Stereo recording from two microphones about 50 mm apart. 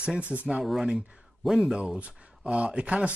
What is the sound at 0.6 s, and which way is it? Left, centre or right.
Speech, centre.